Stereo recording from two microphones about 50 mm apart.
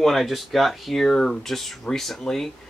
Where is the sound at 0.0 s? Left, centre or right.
Centre.